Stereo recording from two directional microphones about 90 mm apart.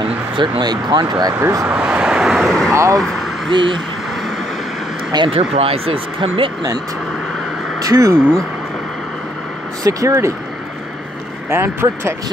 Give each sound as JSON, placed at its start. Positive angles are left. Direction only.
{"t": 0.0, "sound": "speech", "side_deg": -55}
{"t": 1.7, "sound": "vehicle", "side_deg": -15}
{"t": 2.7, "sound": "speech", "side_deg": -35}
{"t": 3.0, "sound": "a sound", "side_deg": 5}
{"t": 3.5, "sound": "speech", "side_deg": -65}
{"t": 5.1, "sound": "speech", "side_deg": -65}
{"t": 5.6, "sound": "speech", "side_deg": -90}
{"t": 7.8, "sound": "speech", "side_deg": -40}
{"t": 9.8, "sound": "speech", "side_deg": -35}
{"t": 11.5, "sound": "speech", "side_deg": -25}